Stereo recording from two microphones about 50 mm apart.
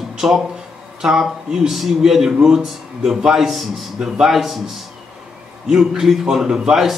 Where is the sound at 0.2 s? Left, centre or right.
Centre.